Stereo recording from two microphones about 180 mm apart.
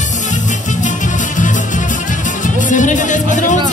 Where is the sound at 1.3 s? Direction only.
45° left (ahead or behind).